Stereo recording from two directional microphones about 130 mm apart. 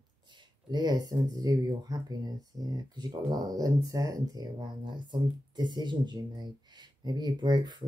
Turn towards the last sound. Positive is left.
turn(degrees=-35)  # may be behind; listen again after turning